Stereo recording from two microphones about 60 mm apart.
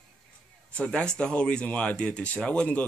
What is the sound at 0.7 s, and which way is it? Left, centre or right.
Speech, centre.